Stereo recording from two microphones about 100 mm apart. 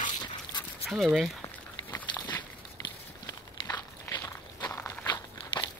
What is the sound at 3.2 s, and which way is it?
Walk, 35° left (ahead or behind).